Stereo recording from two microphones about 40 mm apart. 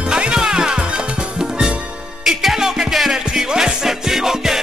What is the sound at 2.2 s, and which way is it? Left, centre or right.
Music, centre.